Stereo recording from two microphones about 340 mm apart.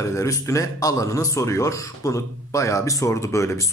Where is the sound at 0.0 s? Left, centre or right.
Centre.